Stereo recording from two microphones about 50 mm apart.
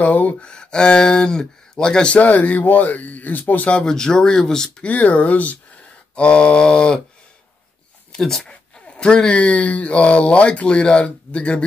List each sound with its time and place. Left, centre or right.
0.0 s speech: left
0.4 s speech: centre
2.2 s speech: left
3.7 s speech: centre
4.8 s speech: left
8.1 s speech: centre
8.5 s speech: centre